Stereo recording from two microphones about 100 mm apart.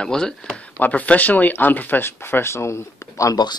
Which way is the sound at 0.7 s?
15° left (ahead or behind).